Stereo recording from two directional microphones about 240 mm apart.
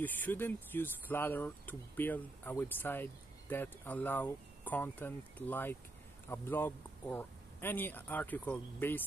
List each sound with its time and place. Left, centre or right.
0.0 s speech: centre